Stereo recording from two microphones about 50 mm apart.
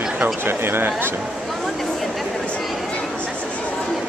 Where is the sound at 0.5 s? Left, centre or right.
Right.